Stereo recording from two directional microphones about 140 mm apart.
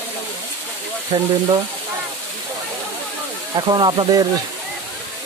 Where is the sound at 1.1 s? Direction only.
40° right (ahead or behind).